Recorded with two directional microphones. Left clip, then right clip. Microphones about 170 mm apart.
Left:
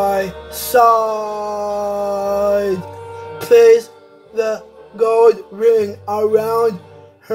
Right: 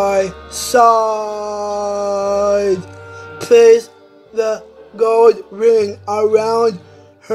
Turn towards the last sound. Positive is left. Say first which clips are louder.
# right 2 dB
turn(degrees=-15)  # may be behind; listen again after turning